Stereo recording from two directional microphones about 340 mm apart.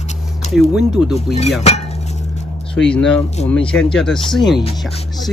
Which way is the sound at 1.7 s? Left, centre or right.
Centre.